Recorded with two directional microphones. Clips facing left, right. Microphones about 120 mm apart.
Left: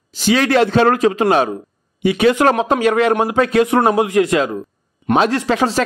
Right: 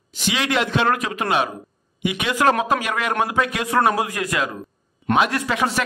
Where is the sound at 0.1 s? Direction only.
35° left (ahead or behind).